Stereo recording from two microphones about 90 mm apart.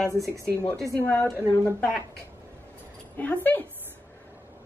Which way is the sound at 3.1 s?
20° left (ahead or behind).